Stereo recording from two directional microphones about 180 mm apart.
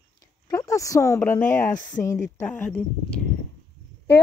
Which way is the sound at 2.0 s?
15° left (ahead or behind).